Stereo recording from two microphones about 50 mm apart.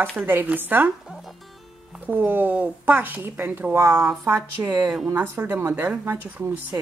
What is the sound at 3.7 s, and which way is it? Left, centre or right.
Speech, right.